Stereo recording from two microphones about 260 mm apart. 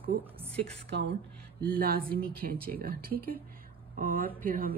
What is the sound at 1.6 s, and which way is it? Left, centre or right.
A woman's voice, right.